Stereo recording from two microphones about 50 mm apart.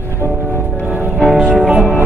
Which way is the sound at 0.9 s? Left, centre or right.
Right.